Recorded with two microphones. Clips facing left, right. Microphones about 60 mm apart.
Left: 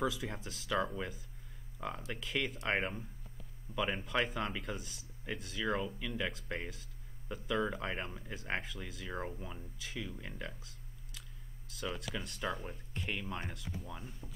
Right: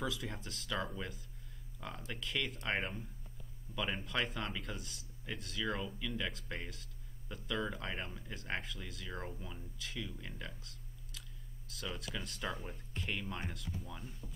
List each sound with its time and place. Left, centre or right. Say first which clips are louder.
0.0 s speech: left 4 dB; centre
10.0 s speech: left 3 dB; centre
11.7 s speech: left 3 dB; centre